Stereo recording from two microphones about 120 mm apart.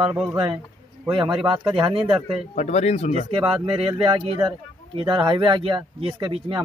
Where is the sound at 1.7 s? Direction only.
45° right (ahead or behind).